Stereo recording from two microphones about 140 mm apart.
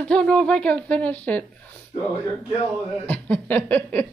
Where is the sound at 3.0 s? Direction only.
10° left (ahead or behind).